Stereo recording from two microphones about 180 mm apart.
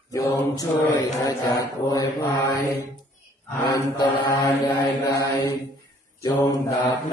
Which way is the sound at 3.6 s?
25° left (ahead or behind).